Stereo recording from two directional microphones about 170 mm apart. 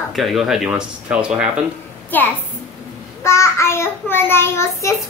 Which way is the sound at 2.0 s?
10° left (ahead or behind).